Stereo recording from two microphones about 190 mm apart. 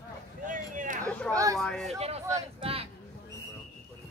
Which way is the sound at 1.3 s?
15° right (ahead or behind).